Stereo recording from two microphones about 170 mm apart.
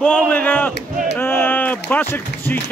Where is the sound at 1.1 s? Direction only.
10° left (ahead or behind).